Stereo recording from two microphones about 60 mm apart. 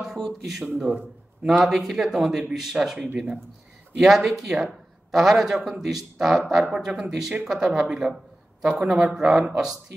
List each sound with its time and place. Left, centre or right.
0.2 s speech: centre